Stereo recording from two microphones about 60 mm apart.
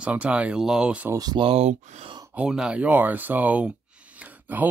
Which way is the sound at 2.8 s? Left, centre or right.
Right.